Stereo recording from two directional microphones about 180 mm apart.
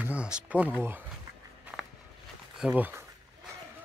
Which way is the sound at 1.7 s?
Centre (ahead or behind).